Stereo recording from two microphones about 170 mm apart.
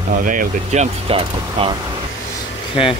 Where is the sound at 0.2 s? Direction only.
50° right (ahead or behind).